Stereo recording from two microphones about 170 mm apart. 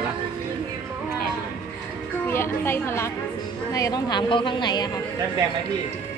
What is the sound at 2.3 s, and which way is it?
A woman's voice, 15° left (ahead or behind).